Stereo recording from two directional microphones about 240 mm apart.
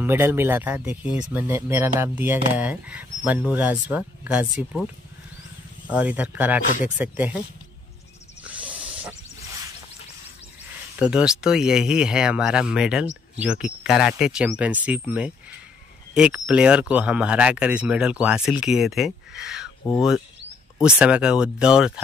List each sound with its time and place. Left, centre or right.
0.0 s speech: centre
5.9 s speech: centre
8.6 s snake: right
11.0 s speech: centre
20.7 s speech: centre